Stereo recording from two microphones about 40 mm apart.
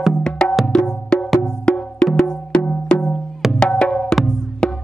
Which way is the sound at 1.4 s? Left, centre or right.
Left.